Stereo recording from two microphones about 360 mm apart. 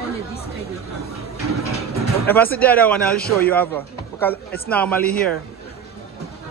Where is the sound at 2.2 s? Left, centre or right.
Centre.